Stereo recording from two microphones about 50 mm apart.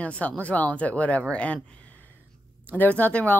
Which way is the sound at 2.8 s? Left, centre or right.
Left.